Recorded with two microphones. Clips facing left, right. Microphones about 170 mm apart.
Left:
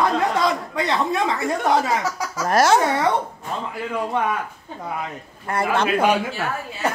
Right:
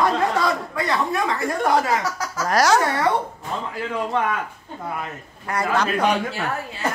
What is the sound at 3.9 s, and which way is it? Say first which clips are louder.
Speech: even; 10° left (ahead or behind).